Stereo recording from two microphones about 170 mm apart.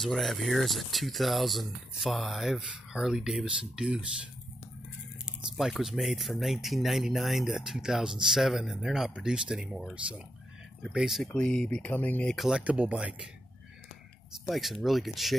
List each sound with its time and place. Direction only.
0.0 s speech: centre (ahead or behind)
5.6 s speech: centre (ahead or behind)
14.5 s speech: centre (ahead or behind)